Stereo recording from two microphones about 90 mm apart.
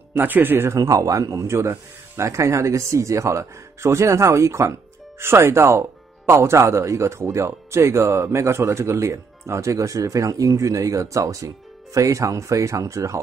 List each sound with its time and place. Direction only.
0.1 s speech: 20° right (ahead or behind)
0.7 s speech: 40° right (ahead or behind)